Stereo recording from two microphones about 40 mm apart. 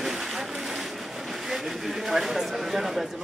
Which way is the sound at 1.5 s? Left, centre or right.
Centre.